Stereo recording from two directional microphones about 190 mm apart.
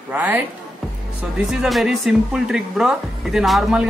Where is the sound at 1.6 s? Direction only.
Centre (ahead or behind).